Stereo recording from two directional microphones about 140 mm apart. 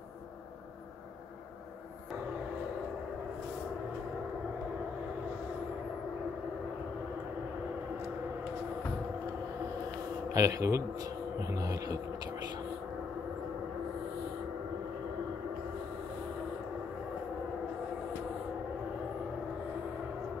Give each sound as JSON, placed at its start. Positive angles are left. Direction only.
{"t": 10.3, "sound": "speech", "side_deg": -25}